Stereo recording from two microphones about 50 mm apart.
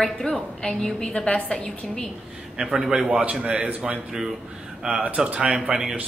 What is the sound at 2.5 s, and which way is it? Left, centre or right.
Speech, centre.